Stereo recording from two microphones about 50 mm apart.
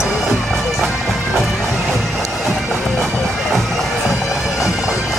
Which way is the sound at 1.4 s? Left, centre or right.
Centre.